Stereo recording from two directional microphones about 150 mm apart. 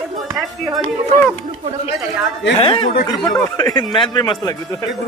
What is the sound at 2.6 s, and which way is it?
Speech, 35° left (ahead or behind).